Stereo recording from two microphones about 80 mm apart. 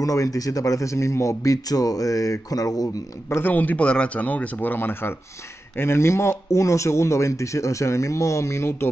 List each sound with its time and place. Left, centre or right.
0.0 s speech: left
3.3 s speech: left